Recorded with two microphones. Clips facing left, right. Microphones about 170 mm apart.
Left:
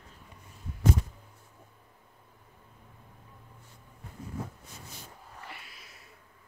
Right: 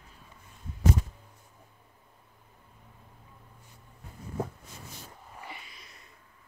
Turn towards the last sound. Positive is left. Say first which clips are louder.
# right 1 dB
turn(degrees=5)  # may be behind; listen again after turning